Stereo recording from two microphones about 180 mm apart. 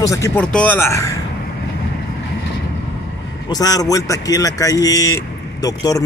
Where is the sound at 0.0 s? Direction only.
15° left (ahead or behind).